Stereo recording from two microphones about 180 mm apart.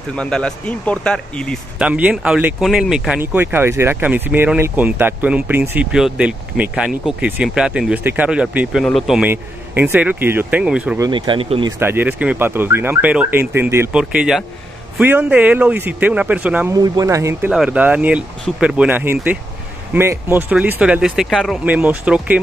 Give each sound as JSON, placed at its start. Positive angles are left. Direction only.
{"t": 0.1, "sound": "speech", "side_deg": 5}
{"t": 1.8, "sound": "speech", "side_deg": -5}
{"t": 11.0, "sound": "speech", "side_deg": -25}
{"t": 11.8, "sound": "speech", "side_deg": -10}
{"t": 16.7, "sound": "speech", "side_deg": -20}